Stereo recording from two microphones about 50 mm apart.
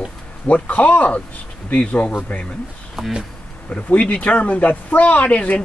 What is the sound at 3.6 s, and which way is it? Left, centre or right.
Speech, left.